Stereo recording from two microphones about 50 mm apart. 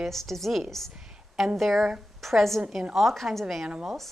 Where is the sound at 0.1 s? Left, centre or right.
Centre.